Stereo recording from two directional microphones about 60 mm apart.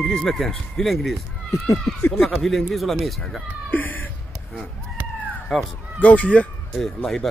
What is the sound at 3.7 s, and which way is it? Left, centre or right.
Cat, left.